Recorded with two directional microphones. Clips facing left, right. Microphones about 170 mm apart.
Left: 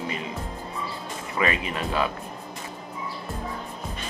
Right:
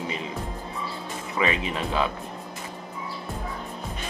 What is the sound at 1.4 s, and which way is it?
Speech, 10° right (ahead or behind).